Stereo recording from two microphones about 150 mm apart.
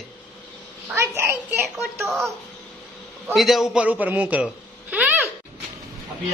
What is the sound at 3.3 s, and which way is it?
A man's voice, centre (ahead or behind).